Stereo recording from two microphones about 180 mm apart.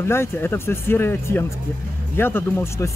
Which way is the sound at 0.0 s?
15° left (ahead or behind).